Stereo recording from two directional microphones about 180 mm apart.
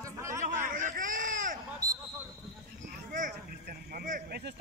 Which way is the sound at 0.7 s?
50° right (ahead or behind).